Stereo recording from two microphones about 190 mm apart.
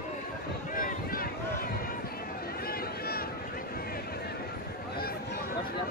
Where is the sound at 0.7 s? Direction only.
50° left (ahead or behind).